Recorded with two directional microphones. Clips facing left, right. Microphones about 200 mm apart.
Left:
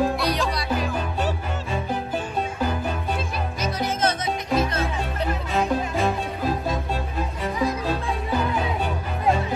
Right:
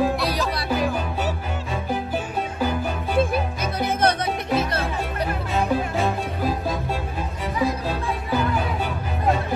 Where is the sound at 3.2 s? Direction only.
55° right (ahead or behind).